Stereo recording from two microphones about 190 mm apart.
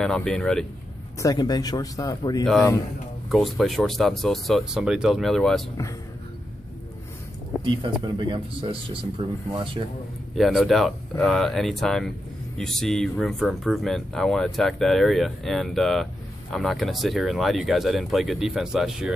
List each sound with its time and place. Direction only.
0.0 s speech: 5° left (ahead or behind)
1.2 s speech: 20° left (ahead or behind)
2.4 s speech: 5° left (ahead or behind)
7.6 s speech: 25° right (ahead or behind)
10.3 s speech: centre (ahead or behind)